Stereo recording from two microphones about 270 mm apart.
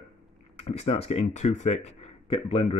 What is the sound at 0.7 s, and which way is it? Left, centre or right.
Speech, left.